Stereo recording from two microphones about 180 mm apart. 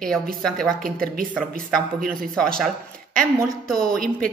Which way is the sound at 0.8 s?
50° right (ahead or behind).